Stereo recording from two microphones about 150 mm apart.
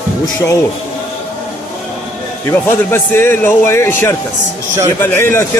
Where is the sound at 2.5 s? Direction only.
15° left (ahead or behind).